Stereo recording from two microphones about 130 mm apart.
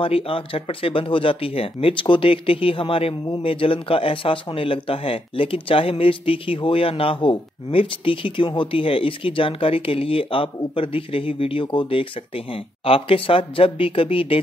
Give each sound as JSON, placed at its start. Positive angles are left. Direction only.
{"t": 0.0, "sound": "speech", "side_deg": 45}